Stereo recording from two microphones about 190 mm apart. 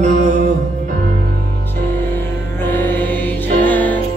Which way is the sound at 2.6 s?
10° left (ahead or behind).